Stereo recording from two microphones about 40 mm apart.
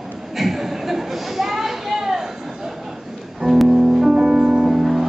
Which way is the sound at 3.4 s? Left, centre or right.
Centre.